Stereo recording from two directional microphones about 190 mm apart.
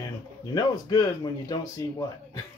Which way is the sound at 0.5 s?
20° left (ahead or behind).